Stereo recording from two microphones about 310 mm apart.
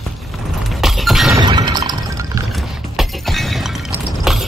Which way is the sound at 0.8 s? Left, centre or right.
Centre.